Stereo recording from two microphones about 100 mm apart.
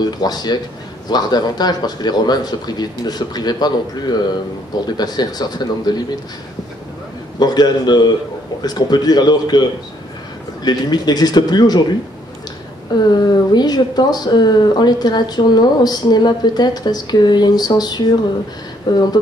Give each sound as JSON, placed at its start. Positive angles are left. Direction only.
{"t": 0.2, "sound": "speech", "side_deg": 45}
{"t": 4.8, "sound": "speech", "side_deg": 45}
{"t": 7.3, "sound": "speech", "side_deg": 45}
{"t": 12.9, "sound": "speech", "side_deg": 45}